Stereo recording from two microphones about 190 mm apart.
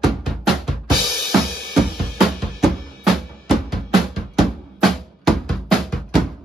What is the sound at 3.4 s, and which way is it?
Drum, centre (ahead or behind).